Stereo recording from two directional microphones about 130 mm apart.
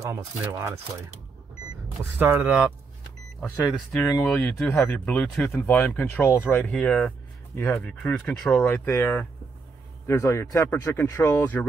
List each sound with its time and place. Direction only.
0.0 s speech: 25° right (ahead or behind)
2.1 s speech: 15° right (ahead or behind)
3.3 s speech: 5° left (ahead or behind)
5.5 s speech: 15° left (ahead or behind)
8.6 s speech: 15° left (ahead or behind)